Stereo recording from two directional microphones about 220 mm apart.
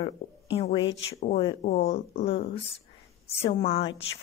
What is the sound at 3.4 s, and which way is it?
Speech, 25° left (ahead or behind).